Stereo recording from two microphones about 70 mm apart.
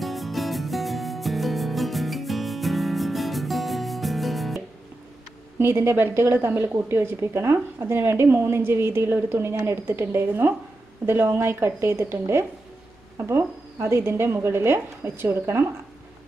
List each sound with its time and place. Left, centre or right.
0.0 s music: centre
5.6 s a woman's voice: right